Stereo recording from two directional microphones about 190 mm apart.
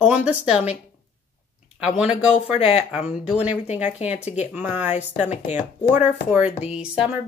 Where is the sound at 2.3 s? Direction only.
30° left (ahead or behind).